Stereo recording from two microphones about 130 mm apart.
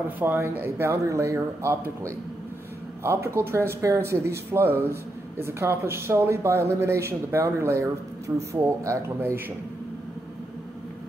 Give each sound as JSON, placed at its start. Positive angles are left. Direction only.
{"t": 0.2, "sound": "speech", "side_deg": -15}